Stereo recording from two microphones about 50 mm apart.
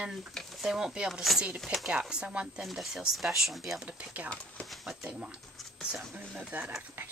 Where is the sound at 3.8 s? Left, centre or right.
Right.